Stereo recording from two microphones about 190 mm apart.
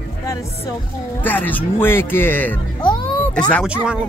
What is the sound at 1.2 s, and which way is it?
Speech, 10° left (ahead or behind).